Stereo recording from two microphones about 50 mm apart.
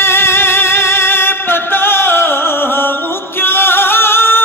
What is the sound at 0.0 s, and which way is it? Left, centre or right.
Music, left.